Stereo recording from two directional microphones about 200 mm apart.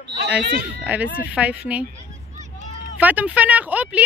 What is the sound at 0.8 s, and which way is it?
Speech, 5° right (ahead or behind).